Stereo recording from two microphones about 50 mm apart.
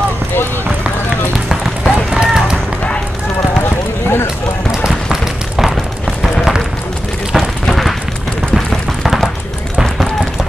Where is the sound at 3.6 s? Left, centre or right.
Left.